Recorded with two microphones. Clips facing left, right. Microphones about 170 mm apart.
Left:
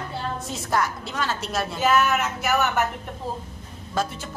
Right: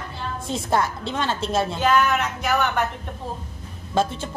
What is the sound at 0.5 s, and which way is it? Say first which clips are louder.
Speech: right 3 dB; 25° right (ahead or behind).